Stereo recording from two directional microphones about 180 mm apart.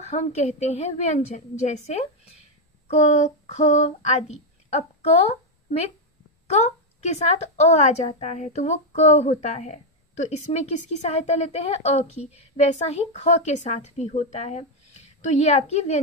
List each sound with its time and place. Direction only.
0.0 s a woman's voice: 40° left (ahead or behind)
2.9 s child singing: 40° left (ahead or behind)
6.4 s a woman's voice: 40° left (ahead or behind)